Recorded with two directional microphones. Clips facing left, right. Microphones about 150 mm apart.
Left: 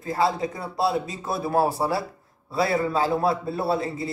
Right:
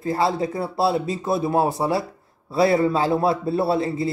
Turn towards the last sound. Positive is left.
turn(degrees=-25)  # may be behind; listen again after turning